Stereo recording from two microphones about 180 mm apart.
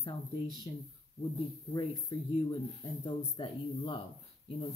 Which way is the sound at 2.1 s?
25° left (ahead or behind).